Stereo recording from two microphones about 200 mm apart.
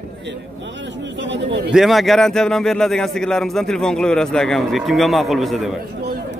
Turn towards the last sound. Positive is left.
turn(degrees=0)  # may be behind; listen again after turning